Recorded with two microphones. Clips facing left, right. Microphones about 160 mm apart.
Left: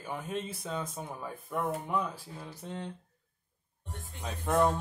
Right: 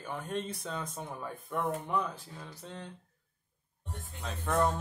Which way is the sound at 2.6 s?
20° left (ahead or behind).